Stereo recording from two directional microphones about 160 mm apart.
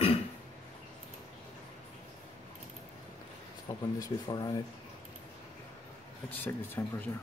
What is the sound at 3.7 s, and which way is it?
Speech, 25° left (ahead or behind).